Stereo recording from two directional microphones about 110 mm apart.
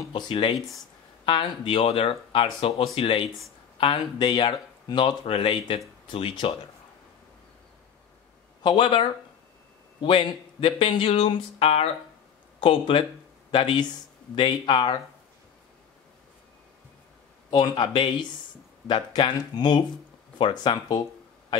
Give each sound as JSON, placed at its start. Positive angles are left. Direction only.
{"t": 0.1, "sound": "speech", "side_deg": 45}
{"t": 8.6, "sound": "speech", "side_deg": 45}
{"t": 17.5, "sound": "speech", "side_deg": 45}